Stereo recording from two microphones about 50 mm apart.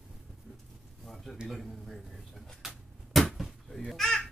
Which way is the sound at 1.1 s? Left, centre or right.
Centre.